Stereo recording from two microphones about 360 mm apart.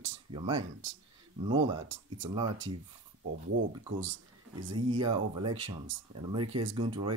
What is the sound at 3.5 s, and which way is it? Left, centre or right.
Speech, right.